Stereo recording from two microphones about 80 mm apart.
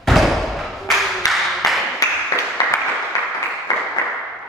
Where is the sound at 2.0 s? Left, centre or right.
Left.